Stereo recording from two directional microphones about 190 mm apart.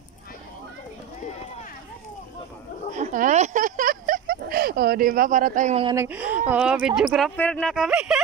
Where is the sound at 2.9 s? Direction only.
40° right (ahead or behind).